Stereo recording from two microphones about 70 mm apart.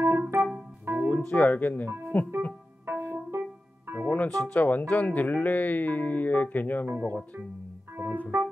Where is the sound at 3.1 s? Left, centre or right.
Right.